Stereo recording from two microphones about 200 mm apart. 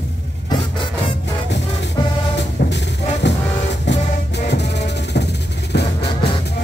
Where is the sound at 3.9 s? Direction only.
60° left (ahead or behind).